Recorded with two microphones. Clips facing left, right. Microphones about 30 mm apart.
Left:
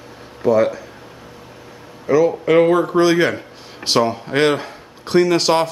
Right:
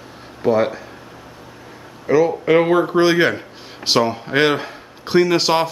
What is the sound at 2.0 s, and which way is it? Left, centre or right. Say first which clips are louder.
Speech: even; centre.